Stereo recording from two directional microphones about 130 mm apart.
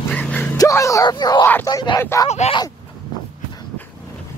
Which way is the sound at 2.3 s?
55° left (ahead or behind).